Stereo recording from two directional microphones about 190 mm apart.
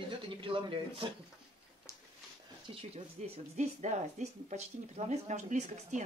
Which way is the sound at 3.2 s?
35° right (ahead or behind).